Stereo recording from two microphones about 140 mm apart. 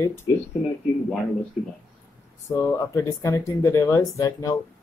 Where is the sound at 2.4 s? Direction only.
25° left (ahead or behind).